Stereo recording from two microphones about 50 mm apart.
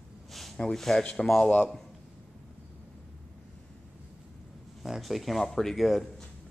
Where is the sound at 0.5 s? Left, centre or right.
Centre.